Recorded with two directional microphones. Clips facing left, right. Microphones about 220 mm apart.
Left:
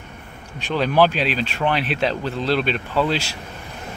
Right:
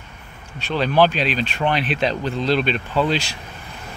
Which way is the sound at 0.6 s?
10° left (ahead or behind).